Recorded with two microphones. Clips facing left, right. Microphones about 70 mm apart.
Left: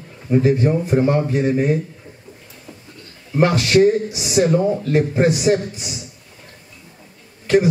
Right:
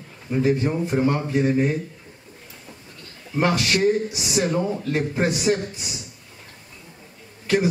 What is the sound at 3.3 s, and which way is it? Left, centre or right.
A man's voice, centre.